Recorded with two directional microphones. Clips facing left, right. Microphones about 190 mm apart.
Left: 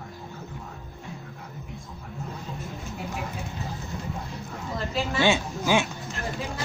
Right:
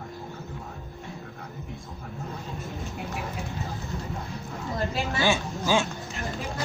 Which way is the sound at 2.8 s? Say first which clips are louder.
Left 1 dB; centre (ahead or behind).